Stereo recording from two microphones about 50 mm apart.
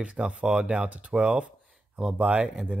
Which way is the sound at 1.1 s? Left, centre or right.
Right.